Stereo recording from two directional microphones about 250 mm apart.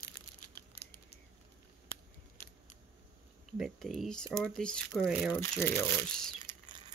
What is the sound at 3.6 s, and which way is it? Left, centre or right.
Speech, centre.